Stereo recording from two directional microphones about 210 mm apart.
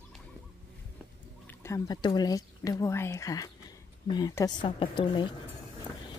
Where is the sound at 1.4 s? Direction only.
15° left (ahead or behind).